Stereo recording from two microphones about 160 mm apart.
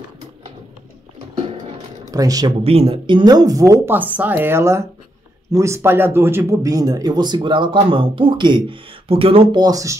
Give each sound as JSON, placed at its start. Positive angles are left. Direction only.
{"t": 2.0, "sound": "speech", "side_deg": -20}
{"t": 2.6, "sound": "speech", "side_deg": -40}